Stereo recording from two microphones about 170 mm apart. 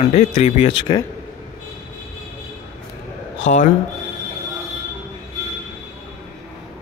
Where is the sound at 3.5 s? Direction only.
45° left (ahead or behind).